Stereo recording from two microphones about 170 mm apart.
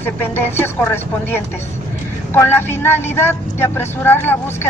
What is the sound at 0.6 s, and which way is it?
A woman's voice, 10° left (ahead or behind).